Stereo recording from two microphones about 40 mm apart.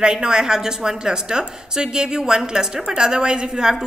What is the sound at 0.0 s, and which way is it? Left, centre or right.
A woman's voice, right.